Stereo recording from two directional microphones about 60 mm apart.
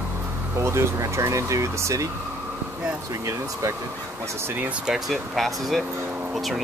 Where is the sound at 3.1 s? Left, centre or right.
Right.